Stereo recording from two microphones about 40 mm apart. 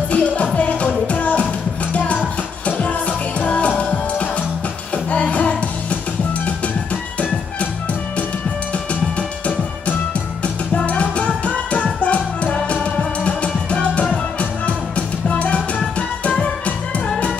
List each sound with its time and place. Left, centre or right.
0.1 s music: left
10.4 s music: left